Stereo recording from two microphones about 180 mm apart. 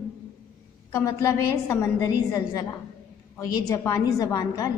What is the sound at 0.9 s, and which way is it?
A woman's voice, 20° left (ahead or behind).